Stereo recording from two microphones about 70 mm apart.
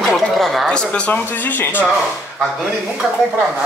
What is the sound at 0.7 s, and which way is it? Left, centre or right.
Speech, centre.